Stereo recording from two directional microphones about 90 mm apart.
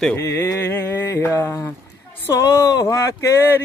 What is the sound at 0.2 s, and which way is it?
Speech, 30° left (ahead or behind).